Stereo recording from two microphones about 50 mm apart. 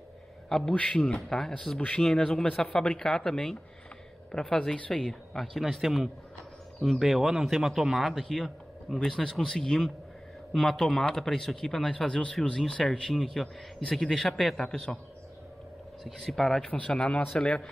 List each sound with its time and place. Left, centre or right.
0.5 s a man's voice: centre
5.0 s speech: centre
16.0 s speech: centre
16.6 s speech: left